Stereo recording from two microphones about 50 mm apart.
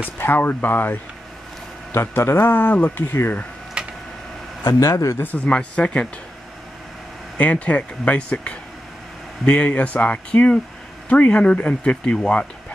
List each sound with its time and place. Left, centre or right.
0.2 s speech: left
1.9 s speech: left
3.8 s a sound: centre
4.6 s speech: left
5.2 s speech: left
5.5 s speech: left
7.3 s speech: left